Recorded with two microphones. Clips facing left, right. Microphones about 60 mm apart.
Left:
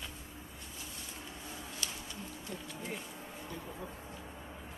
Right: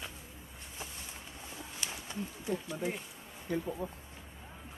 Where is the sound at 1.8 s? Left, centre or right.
Centre.